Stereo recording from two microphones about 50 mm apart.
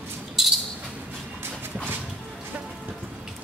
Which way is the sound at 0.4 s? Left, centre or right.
Centre.